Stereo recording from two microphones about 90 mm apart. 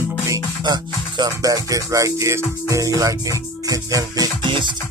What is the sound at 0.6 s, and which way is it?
Music, 55° right (ahead or behind).